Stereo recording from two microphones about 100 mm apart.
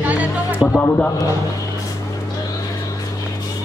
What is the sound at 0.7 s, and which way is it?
Speech, 15° left (ahead or behind).